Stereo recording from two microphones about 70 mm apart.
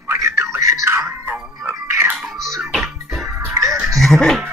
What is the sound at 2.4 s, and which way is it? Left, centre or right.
Music, right.